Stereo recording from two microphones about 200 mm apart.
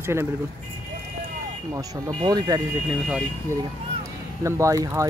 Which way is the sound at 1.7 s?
15° right (ahead or behind).